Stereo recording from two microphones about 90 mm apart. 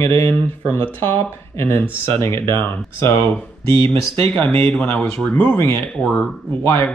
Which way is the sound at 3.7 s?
70° right (ahead or behind).